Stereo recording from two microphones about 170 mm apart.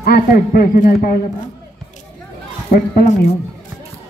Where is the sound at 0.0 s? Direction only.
65° left (ahead or behind).